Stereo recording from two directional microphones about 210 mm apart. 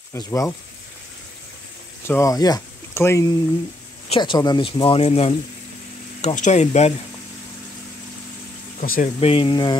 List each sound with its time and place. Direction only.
0.1 s speech: 15° left (ahead or behind)
2.0 s speech: 15° left (ahead or behind); by 6.9 s 30° left (ahead or behind)
8.8 s speech: 40° left (ahead or behind)
9.2 s speech: 25° left (ahead or behind)